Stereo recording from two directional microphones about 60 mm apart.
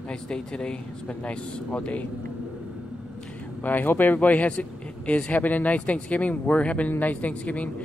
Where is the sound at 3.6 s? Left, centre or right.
Left.